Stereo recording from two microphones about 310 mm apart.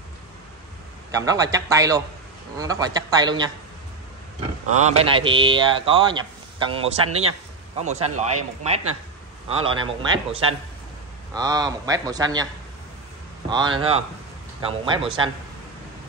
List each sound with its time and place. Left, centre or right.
1.1 s speech: centre
4.7 s speech: right
13.5 s speech: centre